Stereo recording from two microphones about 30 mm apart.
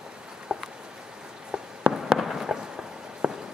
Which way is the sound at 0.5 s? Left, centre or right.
Right.